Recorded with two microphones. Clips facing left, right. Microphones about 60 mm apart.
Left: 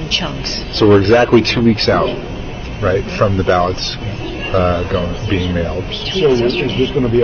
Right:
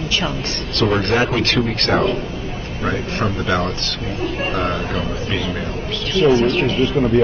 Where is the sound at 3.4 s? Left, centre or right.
Left.